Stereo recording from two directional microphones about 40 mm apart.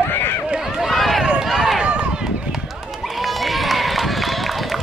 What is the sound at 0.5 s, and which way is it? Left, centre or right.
Run, centre.